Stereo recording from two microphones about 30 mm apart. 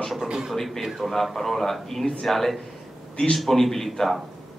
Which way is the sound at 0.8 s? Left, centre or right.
Centre.